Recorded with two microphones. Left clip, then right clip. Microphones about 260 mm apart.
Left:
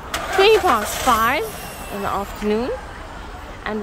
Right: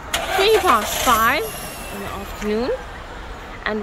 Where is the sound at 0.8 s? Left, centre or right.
Right.